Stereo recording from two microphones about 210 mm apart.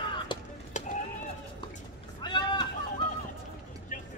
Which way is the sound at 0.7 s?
35° left (ahead or behind).